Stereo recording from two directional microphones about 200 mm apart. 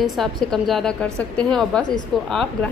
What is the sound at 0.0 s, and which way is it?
A woman's voice, centre (ahead or behind).